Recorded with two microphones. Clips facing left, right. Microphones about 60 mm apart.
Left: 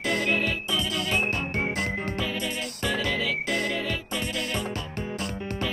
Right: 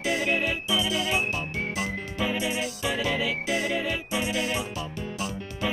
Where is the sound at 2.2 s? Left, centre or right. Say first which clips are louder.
Right 3 dB; centre.